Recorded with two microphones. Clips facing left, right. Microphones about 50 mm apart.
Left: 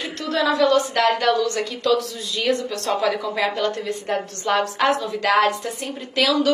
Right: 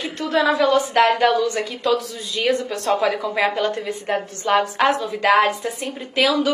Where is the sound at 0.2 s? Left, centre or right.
Centre.